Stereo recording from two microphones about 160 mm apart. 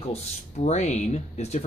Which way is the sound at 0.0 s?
40° left (ahead or behind).